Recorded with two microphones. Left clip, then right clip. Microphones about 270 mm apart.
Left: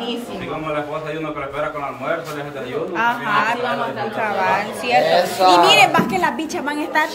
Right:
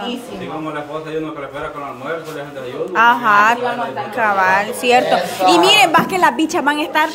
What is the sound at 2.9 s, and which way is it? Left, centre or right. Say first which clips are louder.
A woman's voice: right 7 dB; centre.